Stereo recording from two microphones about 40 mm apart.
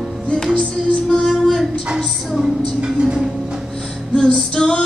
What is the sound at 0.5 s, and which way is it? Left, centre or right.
Music, left.